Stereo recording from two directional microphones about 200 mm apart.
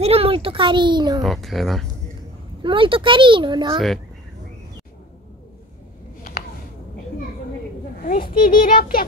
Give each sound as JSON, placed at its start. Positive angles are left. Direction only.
{"t": 0.0, "sound": "speech", "side_deg": -30}
{"t": 1.2, "sound": "speech", "side_deg": 0}
{"t": 2.6, "sound": "speech", "side_deg": -25}
{"t": 8.0, "sound": "a child's voice", "side_deg": 45}